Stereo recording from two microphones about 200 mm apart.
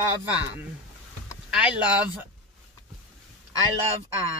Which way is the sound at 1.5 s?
5° right (ahead or behind).